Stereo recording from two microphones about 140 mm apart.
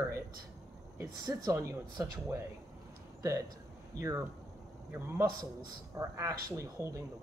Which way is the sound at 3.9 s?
25° right (ahead or behind).